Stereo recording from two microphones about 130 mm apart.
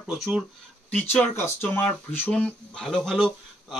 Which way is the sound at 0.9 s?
15° left (ahead or behind).